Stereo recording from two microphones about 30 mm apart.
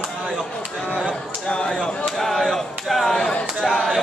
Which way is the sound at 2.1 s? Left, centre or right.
Centre.